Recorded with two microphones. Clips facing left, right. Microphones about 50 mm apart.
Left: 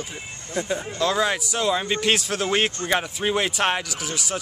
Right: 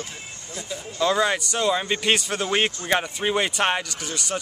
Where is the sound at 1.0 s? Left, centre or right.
Centre.